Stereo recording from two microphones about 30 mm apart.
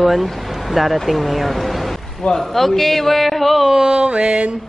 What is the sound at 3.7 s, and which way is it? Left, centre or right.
Mantra, right.